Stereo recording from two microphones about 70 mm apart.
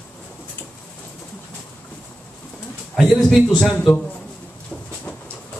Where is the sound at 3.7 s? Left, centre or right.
Centre.